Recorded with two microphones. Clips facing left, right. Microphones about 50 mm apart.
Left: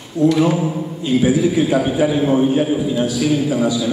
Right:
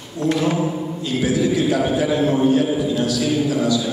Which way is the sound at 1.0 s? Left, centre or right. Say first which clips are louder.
Left 5 dB; left.